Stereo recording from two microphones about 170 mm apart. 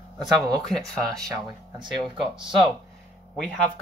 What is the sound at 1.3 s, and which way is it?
Speech, 25° right (ahead or behind).